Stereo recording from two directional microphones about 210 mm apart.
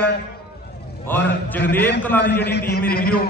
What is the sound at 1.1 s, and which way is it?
A man's voice, 10° left (ahead or behind).